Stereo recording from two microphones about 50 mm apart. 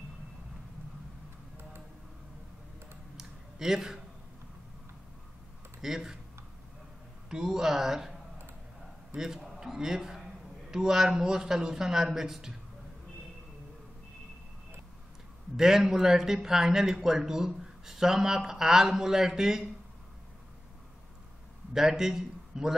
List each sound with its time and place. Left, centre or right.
3.2 s a sound: centre
5.8 s speech: centre
7.2 s a man's voice: centre
15.5 s a man's voice: centre
21.7 s a man's voice: centre